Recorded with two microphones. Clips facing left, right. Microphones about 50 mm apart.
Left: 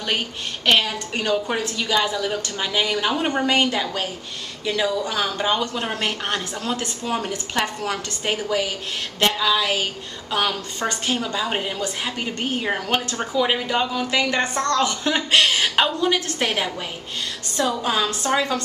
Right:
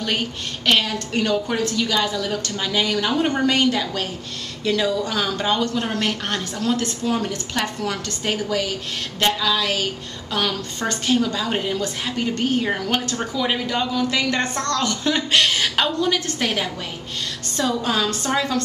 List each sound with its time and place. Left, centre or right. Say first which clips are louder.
0.7 s speech: even; centre